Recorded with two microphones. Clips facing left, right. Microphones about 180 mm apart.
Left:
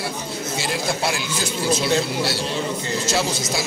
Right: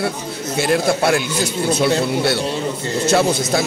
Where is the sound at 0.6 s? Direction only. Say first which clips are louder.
Right 9 dB; 55° right (ahead or behind).